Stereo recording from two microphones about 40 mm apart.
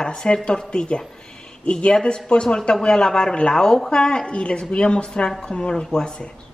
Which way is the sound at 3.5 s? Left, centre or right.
Centre.